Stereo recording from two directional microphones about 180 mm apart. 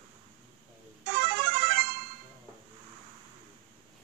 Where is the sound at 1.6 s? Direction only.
55° right (ahead or behind).